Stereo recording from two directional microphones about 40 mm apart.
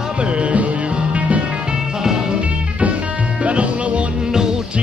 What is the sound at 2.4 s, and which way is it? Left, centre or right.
Music, right.